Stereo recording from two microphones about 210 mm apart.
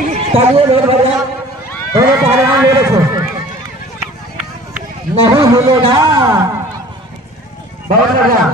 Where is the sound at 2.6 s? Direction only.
15° right (ahead or behind).